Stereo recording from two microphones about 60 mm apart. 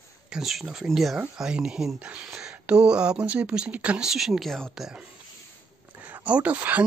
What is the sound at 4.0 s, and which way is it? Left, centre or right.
Speech, centre.